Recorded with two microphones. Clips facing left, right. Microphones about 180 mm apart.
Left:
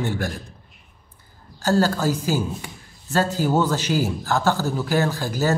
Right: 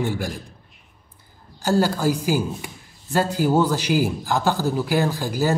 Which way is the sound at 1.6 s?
15° right (ahead or behind).